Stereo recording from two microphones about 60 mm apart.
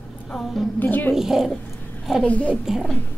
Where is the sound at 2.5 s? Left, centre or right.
Centre.